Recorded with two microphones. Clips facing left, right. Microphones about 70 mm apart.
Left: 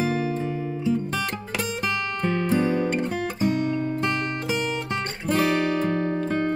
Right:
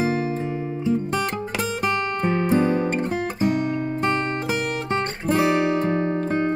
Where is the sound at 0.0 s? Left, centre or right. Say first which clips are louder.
Right 2 dB; centre.